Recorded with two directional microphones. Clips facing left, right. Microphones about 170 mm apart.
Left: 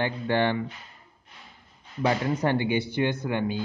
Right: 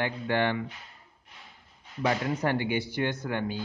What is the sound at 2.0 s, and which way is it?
Speech, 30° left (ahead or behind).